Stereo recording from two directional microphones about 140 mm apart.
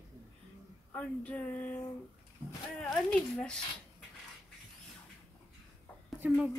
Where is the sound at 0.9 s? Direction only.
10° left (ahead or behind).